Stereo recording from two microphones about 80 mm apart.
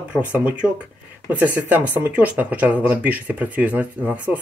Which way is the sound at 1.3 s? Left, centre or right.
Right.